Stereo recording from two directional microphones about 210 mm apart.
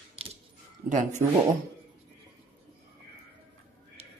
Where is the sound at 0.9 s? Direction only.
35° right (ahead or behind).